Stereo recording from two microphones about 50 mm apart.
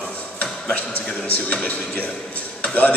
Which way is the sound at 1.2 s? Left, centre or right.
Left.